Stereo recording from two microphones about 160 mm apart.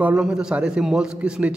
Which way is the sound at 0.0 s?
5° right (ahead or behind).